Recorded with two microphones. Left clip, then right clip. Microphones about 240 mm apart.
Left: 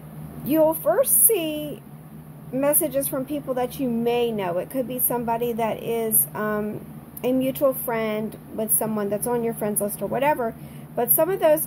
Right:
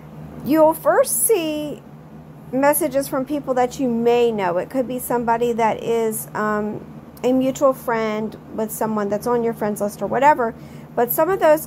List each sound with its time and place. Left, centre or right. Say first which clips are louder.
0.5 s a woman's voice: right 5 dB; centre